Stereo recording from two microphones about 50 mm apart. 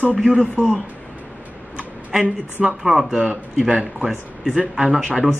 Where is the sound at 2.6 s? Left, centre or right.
Centre.